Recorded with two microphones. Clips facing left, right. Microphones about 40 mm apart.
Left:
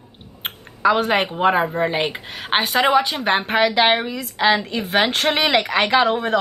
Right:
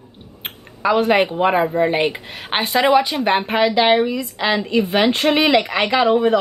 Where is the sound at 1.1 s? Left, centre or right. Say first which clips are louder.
Right 2 dB; centre.